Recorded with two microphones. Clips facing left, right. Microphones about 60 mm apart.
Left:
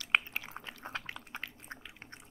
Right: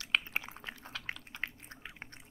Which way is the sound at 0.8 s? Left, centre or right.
Left.